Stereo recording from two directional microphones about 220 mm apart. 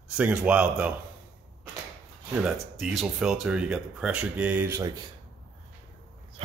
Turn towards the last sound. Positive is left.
turn(degrees=-30)  # may be behind; listen again after turning